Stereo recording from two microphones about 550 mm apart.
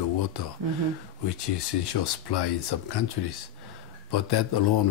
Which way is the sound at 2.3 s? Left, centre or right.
Left.